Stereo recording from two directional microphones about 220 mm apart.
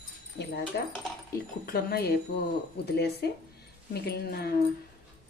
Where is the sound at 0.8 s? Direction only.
45° left (ahead or behind).